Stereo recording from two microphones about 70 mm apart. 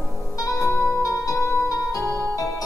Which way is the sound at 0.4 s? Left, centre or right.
Left.